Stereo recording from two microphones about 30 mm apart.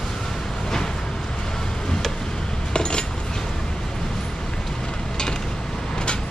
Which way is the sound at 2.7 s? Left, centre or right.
Left.